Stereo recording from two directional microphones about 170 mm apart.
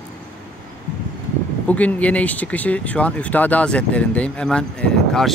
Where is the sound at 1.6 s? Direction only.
10° left (ahead or behind).